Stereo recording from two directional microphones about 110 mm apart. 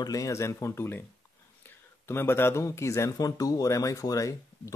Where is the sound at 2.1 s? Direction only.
20° left (ahead or behind).